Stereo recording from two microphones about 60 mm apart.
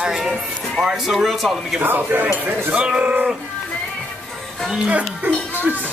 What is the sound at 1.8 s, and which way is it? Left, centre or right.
Speech, right.